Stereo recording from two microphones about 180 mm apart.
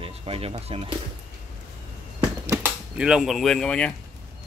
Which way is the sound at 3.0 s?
5° right (ahead or behind).